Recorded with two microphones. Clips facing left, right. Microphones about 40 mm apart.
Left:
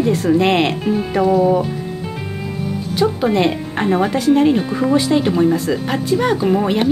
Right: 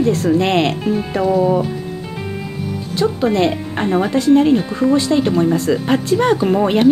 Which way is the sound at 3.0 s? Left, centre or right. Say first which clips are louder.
Even; centre.